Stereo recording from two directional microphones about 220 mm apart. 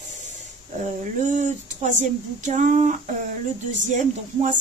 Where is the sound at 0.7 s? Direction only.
35° right (ahead or behind).